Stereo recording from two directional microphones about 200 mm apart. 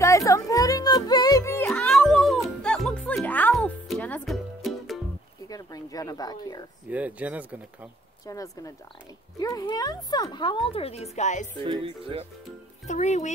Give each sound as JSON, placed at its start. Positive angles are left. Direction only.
{"t": 0.0, "sound": "music", "side_deg": 15}
{"t": 5.5, "sound": "a sound", "side_deg": 20}
{"t": 6.9, "sound": "speech", "side_deg": -5}
{"t": 8.3, "sound": "speech", "side_deg": 15}
{"t": 11.6, "sound": "speech", "side_deg": -25}
{"t": 12.8, "sound": "a child's voice", "side_deg": 35}